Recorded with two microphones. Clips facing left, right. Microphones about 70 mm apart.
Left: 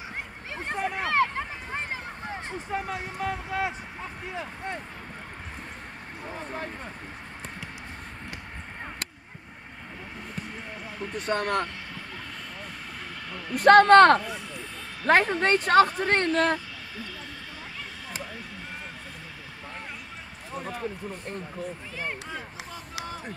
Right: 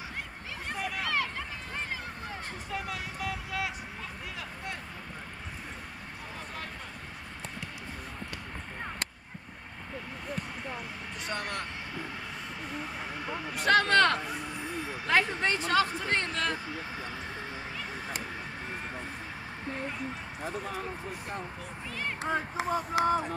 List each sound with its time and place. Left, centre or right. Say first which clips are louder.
0.7 s a sound: left 5 dB; left
2.7 s speech: left 5 dB; left
11.1 s speech: left 9 dB; left
13.6 s speech: left 10 dB; left
22.2 s speech: right 7 dB; right